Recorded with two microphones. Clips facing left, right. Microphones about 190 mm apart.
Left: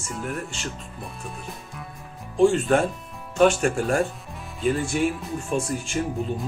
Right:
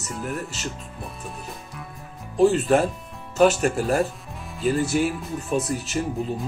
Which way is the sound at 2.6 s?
Centre (ahead or behind).